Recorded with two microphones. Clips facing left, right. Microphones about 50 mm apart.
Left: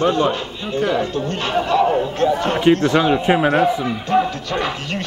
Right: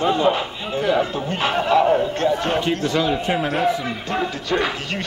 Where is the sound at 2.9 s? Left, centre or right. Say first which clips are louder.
Left 5 dB; left.